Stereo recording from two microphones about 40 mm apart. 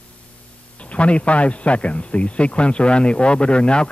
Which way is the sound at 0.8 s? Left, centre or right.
Left.